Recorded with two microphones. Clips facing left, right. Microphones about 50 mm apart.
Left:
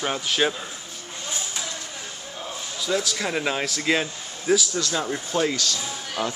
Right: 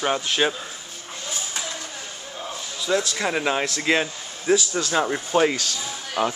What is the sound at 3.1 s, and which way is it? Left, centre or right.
Speech, centre.